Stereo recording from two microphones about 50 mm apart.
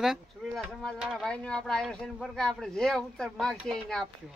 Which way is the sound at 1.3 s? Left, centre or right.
Centre.